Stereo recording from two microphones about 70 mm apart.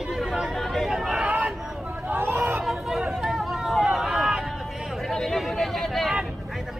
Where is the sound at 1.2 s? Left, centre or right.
Centre.